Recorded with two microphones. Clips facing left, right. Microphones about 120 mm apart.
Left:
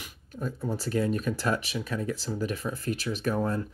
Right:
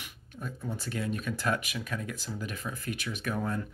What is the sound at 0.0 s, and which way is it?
Speech, 40° left (ahead or behind).